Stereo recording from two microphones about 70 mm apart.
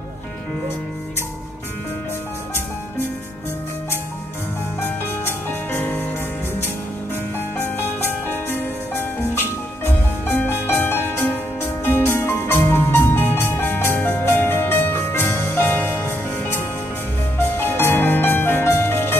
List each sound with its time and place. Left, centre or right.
4.8 s music: left
7.5 s music: left
17.4 s music: left